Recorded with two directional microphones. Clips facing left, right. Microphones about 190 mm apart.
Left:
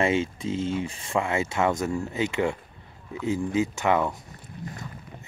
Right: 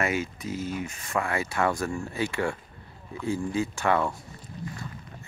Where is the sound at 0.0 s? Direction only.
25° left (ahead or behind).